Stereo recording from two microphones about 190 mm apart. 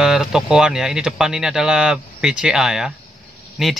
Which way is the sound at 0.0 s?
Centre (ahead or behind).